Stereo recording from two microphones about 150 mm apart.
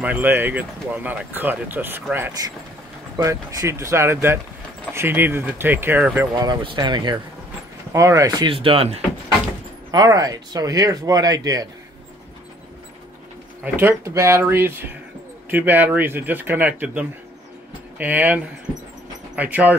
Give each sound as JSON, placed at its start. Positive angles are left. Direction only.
{"t": 0.0, "sound": "speech", "side_deg": -10}
{"t": 2.4, "sound": "speech", "side_deg": -25}
{"t": 6.3, "sound": "speech", "side_deg": -25}
{"t": 8.5, "sound": "speech", "side_deg": -35}
{"t": 9.8, "sound": "speech", "side_deg": -25}
{"t": 13.7, "sound": "speech", "side_deg": -15}